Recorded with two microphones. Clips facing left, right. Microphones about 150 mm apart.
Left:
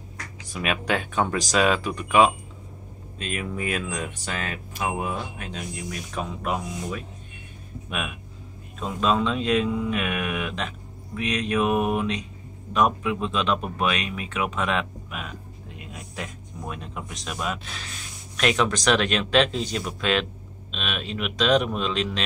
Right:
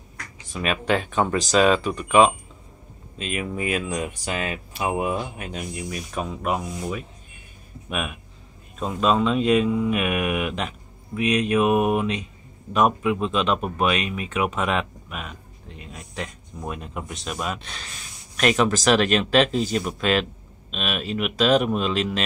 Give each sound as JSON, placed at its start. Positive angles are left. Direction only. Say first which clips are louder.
{"t": 0.5, "sound": "speech", "louder": "right 3 dB", "side_deg": 0}